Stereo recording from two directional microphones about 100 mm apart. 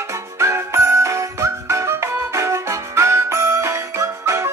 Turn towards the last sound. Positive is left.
turn(degrees=-30)  # may be behind; listen again after turning